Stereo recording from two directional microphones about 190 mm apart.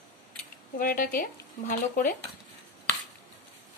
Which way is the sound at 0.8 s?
50° left (ahead or behind).